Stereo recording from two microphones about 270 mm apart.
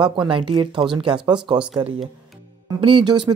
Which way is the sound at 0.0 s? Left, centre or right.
Centre.